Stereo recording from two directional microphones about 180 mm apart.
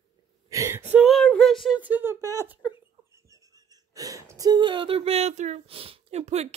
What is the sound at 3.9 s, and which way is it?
Speech, 20° right (ahead or behind).